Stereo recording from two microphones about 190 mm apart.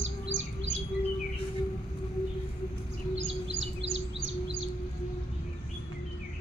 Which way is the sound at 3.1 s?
80° right.